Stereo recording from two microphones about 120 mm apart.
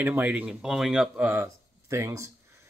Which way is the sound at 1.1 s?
15° right (ahead or behind).